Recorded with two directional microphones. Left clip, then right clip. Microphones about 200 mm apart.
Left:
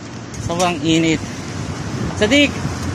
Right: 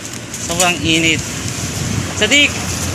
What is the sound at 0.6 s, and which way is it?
Speech, 20° left (ahead or behind).